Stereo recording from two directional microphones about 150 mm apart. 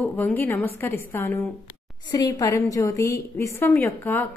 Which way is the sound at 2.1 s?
25° left (ahead or behind).